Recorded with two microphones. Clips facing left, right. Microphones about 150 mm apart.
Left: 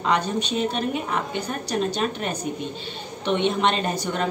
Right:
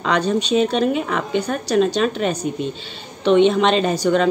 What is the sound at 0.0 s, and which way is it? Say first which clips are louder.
A woman's voice: right 4 dB; 90° right.